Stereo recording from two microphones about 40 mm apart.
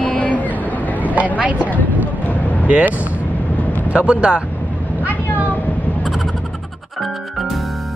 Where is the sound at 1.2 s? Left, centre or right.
Right.